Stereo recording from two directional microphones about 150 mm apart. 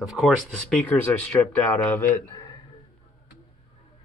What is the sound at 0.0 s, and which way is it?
Speech, centre (ahead or behind).